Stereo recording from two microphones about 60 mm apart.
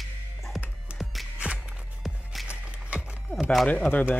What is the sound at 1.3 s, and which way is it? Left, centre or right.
Music, centre.